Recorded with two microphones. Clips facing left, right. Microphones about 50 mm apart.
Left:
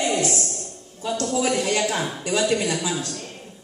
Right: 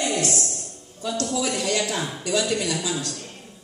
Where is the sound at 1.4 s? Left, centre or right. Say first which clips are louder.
Left 4 dB; left.